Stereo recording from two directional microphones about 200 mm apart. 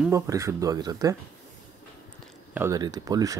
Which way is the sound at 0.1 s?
15° right (ahead or behind).